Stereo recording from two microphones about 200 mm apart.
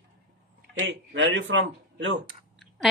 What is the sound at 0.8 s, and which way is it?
A man's voice, 65° right (ahead or behind).